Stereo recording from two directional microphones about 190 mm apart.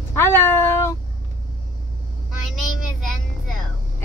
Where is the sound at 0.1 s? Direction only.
10° left (ahead or behind).